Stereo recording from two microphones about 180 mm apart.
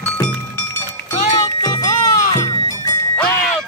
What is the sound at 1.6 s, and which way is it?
Music, 20° left (ahead or behind).